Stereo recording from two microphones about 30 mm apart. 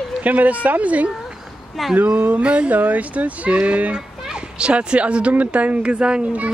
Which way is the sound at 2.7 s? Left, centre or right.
Right.